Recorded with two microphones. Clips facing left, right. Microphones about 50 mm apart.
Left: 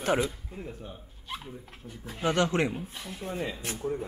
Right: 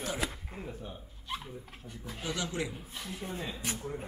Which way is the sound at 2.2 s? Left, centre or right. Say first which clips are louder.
Left 10 dB; left.